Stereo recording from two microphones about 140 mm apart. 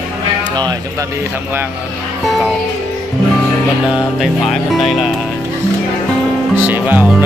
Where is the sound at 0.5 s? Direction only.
30° right (ahead or behind).